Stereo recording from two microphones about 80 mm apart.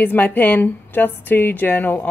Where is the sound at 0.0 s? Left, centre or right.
Left.